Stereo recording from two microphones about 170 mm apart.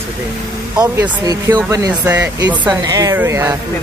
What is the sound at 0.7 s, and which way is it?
Speech, 20° right (ahead or behind).